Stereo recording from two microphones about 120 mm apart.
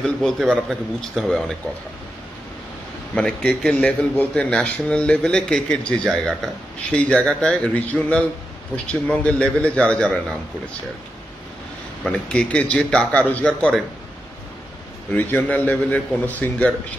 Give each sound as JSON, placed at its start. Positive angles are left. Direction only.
{"t": 0.0, "sound": "a man's voice", "side_deg": 5}
{"t": 3.2, "sound": "a man's voice", "side_deg": 5}
{"t": 12.0, "sound": "a man's voice", "side_deg": 5}
{"t": 15.0, "sound": "a man's voice", "side_deg": 15}